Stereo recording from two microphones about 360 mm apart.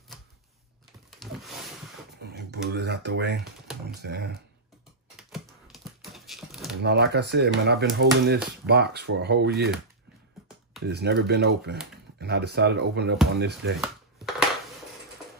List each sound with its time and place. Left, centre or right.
1.2 s wild animals: centre
2.3 s speech: right
5.1 s typing: centre
6.8 s speech: right
10.9 s speech: right